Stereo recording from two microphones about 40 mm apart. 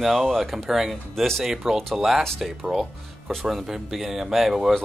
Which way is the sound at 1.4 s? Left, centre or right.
Centre.